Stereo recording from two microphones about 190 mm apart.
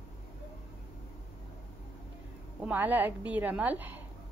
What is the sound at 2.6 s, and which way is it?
A woman's voice, 10° right (ahead or behind).